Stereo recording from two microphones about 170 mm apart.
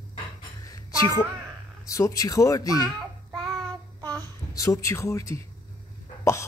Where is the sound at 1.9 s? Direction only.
20° left (ahead or behind).